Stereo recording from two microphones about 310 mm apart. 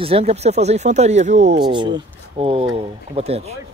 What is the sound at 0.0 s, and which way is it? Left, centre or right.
Speech, centre.